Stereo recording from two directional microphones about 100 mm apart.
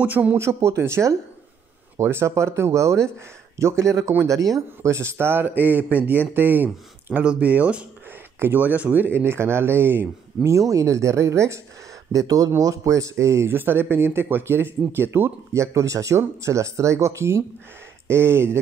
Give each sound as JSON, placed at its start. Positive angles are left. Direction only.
{"t": 0.0, "sound": "a man's voice", "side_deg": -15}